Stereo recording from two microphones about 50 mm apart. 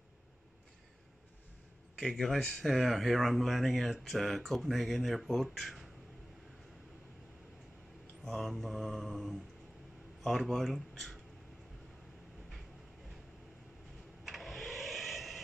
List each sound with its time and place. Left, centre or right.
2.0 s speech: centre
2.6 s speech: centre
8.2 s speech: centre
14.2 s a sound: centre